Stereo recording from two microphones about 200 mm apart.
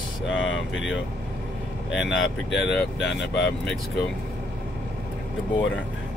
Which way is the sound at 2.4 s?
60° left (ahead or behind).